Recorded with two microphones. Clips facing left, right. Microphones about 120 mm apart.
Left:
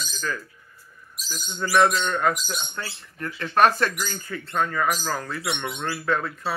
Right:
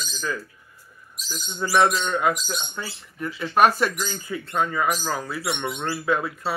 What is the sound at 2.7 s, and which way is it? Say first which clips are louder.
Speech: right 1 dB; 10° right (ahead or behind).